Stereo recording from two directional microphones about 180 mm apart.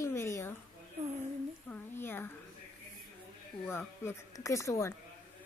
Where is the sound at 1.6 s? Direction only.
10° left (ahead or behind).